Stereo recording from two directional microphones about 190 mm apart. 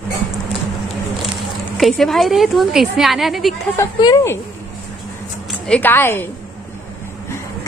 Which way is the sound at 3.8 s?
20° left (ahead or behind).